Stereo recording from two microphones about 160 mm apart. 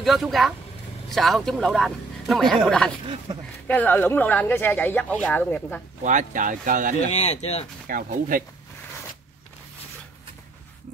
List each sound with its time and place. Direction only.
0.0 s speech: centre (ahead or behind)
3.6 s speech: 10° left (ahead or behind)
6.0 s speech: 50° right (ahead or behind)
7.1 s speech: 40° left (ahead or behind)
7.8 s speech: 60° right (ahead or behind)